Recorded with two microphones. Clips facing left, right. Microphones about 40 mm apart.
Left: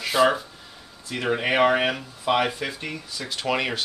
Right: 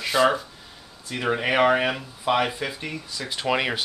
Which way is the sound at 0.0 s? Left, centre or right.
Centre.